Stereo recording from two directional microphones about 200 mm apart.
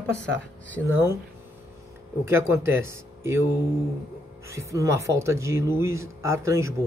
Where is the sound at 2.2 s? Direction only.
10° right (ahead or behind).